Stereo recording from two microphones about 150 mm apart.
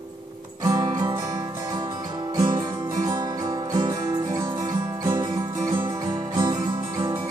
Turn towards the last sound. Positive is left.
turn(degrees=-25)  # may be behind; listen again after turning